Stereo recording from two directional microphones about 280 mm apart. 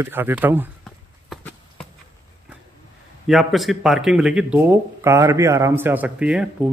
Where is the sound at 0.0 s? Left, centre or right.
Centre.